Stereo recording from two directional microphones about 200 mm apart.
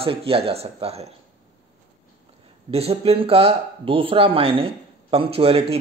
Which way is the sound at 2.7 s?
30° right (ahead or behind).